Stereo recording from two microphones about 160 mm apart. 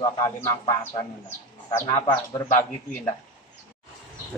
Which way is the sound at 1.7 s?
15° left (ahead or behind).